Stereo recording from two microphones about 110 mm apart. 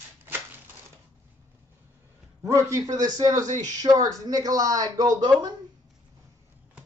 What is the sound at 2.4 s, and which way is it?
A woman's voice, 30° right (ahead or behind).